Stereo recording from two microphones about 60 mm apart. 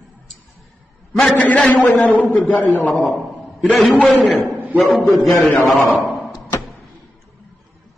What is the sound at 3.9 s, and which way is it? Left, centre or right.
Speech, centre.